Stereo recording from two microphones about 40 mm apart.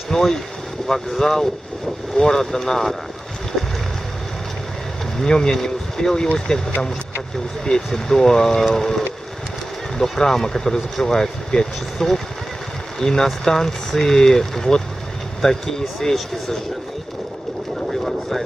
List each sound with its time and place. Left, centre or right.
0.1 s speech: centre
5.2 s speech: centre
17.8 s vehicle: centre